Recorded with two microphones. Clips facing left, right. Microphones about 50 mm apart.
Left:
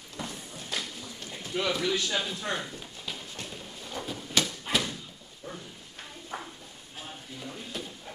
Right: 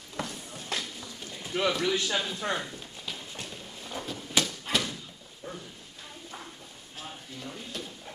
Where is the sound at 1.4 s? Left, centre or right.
Centre.